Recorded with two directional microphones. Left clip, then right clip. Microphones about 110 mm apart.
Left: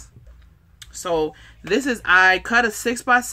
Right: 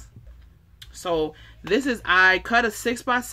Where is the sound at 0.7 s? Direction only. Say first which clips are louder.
Left 3 dB; 25° left (ahead or behind).